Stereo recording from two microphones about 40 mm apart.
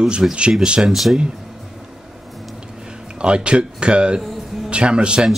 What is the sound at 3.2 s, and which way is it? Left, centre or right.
Speech, right.